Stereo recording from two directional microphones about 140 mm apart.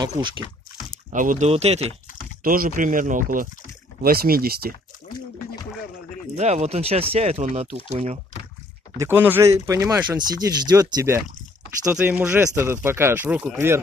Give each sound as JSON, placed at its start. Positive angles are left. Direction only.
{"t": 0.2, "sound": "speech", "side_deg": -35}
{"t": 1.1, "sound": "speech", "side_deg": -70}
{"t": 1.5, "sound": "speech", "side_deg": -50}
{"t": 2.4, "sound": "speech", "side_deg": -90}
{"t": 4.0, "sound": "speech", "side_deg": -90}
{"t": 6.3, "sound": "speech", "side_deg": -50}
{"t": 8.9, "sound": "speech", "side_deg": -15}